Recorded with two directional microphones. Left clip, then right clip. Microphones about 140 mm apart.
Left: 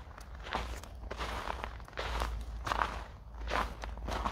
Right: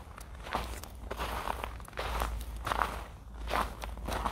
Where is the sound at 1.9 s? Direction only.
20° right (ahead or behind).